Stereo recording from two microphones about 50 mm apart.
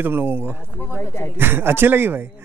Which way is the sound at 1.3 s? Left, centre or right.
Right.